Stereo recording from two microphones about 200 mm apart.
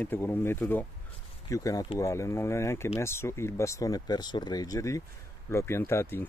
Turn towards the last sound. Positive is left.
turn(degrees=10)  # may be behind; listen again after turning